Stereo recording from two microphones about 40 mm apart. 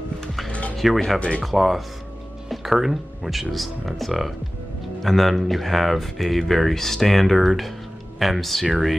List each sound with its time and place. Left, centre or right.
0.5 s music: left
0.7 s speech: centre